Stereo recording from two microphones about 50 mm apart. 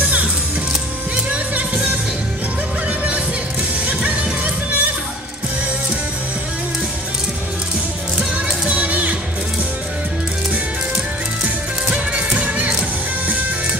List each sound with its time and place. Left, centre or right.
1.3 s music: right
3.8 s music: right
8.6 s music: right
11.9 s music: right